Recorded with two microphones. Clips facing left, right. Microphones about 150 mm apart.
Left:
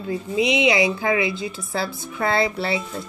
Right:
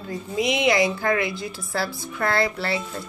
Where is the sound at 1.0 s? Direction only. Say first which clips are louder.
Left 2 dB; 20° left (ahead or behind).